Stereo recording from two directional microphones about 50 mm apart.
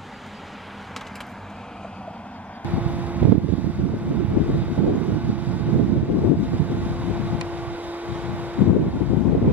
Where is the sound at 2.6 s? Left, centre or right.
Right.